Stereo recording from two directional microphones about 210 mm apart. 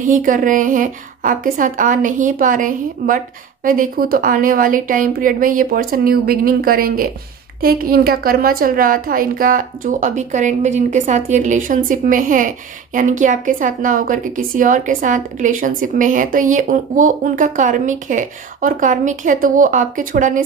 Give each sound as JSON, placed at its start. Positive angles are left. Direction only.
{"t": 0.1, "sound": "a woman's voice", "side_deg": -40}